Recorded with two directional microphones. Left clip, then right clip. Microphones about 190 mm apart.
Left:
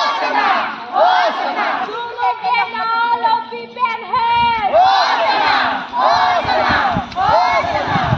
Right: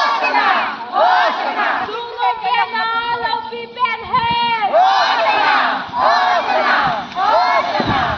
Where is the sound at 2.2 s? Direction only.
35° left (ahead or behind).